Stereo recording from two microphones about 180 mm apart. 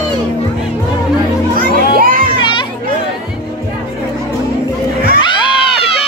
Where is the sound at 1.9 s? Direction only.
50° right (ahead or behind).